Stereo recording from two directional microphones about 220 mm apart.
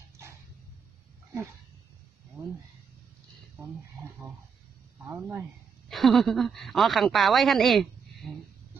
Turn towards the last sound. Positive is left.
turn(degrees=0)  # may be behind; listen again after turning